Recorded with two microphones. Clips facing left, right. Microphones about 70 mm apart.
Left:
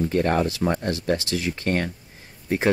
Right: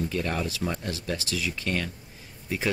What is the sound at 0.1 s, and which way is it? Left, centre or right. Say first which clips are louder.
Speech: left 8 dB; left.